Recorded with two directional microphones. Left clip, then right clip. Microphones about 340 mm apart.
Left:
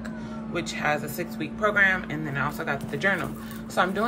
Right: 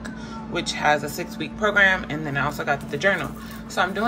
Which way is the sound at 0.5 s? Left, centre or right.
Centre.